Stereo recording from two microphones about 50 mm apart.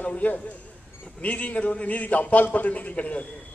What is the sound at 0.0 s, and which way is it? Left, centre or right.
A man's voice, left.